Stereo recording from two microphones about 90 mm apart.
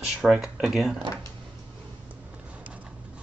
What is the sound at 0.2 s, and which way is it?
Speech, 5° right (ahead or behind).